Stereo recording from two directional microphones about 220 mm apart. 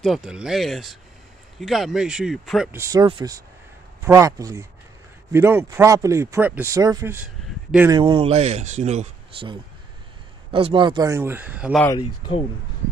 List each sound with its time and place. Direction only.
0.0 s speech: centre (ahead or behind)
2.7 s speech: 15° right (ahead or behind)
7.9 s speech: 20° right (ahead or behind); by 11.8 s 5° right (ahead or behind)
12.0 s speech: 25° left (ahead or behind)